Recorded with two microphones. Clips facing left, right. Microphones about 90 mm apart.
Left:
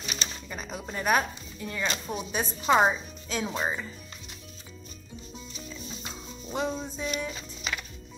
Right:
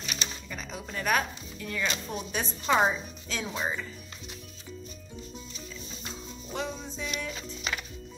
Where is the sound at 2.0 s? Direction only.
15° left (ahead or behind).